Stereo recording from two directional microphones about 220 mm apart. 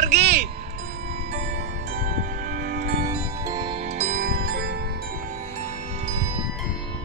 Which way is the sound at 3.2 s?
15° right (ahead or behind).